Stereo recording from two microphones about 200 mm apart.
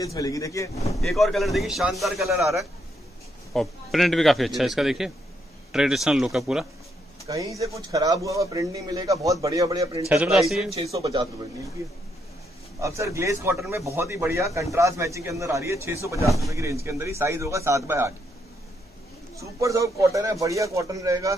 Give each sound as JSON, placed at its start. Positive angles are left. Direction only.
{"t": 0.0, "sound": "speech", "side_deg": 15}
{"t": 1.0, "sound": "a man's voice", "side_deg": 0}
{"t": 7.2, "sound": "speech", "side_deg": -15}
{"t": 10.0, "sound": "a man's voice", "side_deg": -5}
{"t": 10.9, "sound": "speech", "side_deg": -15}
{"t": 12.8, "sound": "speech", "side_deg": -15}
{"t": 19.3, "sound": "speech", "side_deg": -15}